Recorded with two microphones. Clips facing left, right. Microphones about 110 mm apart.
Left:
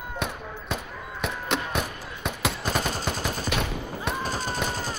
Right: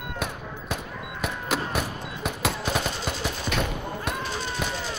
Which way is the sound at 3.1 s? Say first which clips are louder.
Left 1 dB; 45° left (ahead or behind).